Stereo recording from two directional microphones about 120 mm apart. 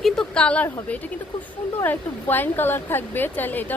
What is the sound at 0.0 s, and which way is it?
Speech, 5° left (ahead or behind).